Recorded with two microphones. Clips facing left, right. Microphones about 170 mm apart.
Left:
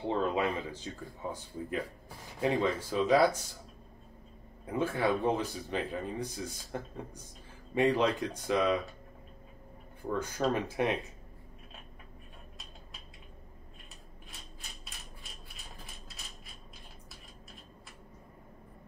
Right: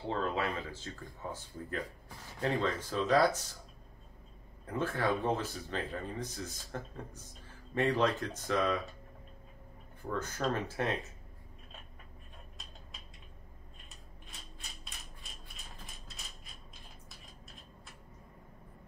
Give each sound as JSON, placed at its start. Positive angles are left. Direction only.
{"t": 0.0, "sound": "speech", "side_deg": 15}
{"t": 4.6, "sound": "speech", "side_deg": 10}
{"t": 10.0, "sound": "speech", "side_deg": 15}